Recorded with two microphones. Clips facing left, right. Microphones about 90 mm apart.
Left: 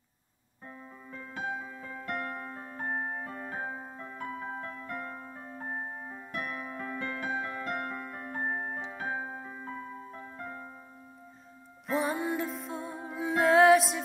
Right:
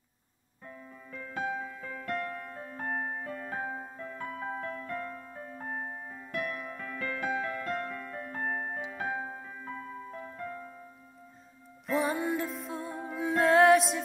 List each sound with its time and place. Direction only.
0.7 s music: 30° left (ahead or behind)
2.9 s music: 15° left (ahead or behind)
11.9 s music: centre (ahead or behind)